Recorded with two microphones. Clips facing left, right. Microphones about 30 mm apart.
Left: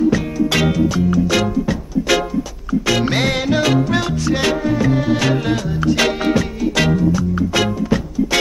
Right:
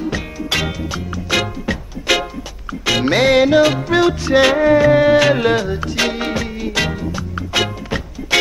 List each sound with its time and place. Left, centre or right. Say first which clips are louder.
0.1 s music: left 4 dB; centre
3.1 s music: right 6 dB; centre
4.6 s music: right 6 dB; right
5.8 s music: left 3 dB; centre
7.0 s music: left 8 dB; right